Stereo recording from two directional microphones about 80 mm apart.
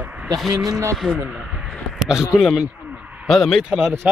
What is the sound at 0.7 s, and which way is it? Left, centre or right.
Speech, right.